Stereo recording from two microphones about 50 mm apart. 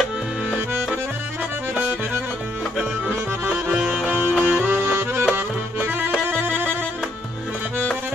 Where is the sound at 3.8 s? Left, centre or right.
Centre.